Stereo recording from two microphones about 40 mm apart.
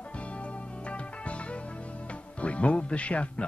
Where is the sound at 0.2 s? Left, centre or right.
Left.